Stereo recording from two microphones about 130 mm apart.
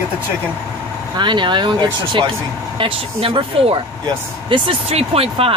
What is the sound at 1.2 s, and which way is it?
Speech, 35° right (ahead or behind).